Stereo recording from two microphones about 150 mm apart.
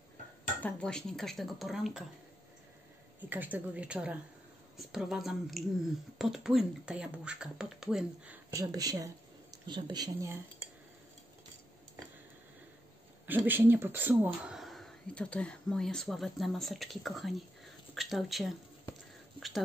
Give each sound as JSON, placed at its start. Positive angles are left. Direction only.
{"t": 0.6, "sound": "speech", "side_deg": 10}
{"t": 3.3, "sound": "a woman's voice", "side_deg": -10}
{"t": 8.5, "sound": "speech", "side_deg": -25}
{"t": 13.3, "sound": "speech", "side_deg": -10}